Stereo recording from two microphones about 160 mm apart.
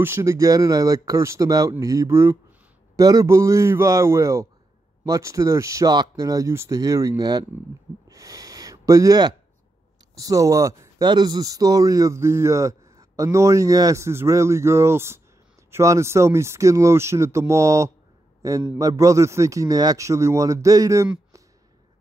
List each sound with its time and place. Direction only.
0.0 s speech: 15° right (ahead or behind)
8.1 s a sound: 20° right (ahead or behind)
10.1 s speech: 20° right (ahead or behind)